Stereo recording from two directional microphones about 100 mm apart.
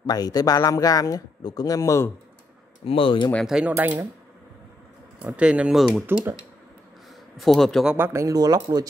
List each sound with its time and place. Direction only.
0.1 s speech: 40° left (ahead or behind)
2.8 s speech: 65° left (ahead or behind)
3.4 s speech: 5° right (ahead or behind)
3.7 s speech: 20° right (ahead or behind)
5.2 s speech: 10° right (ahead or behind)
6.1 s speech: 25° right (ahead or behind)
7.3 s speech: centre (ahead or behind)
8.0 s speech: 30° right (ahead or behind)